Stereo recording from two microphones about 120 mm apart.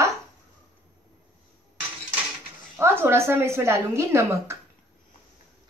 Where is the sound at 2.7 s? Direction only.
20° right (ahead or behind).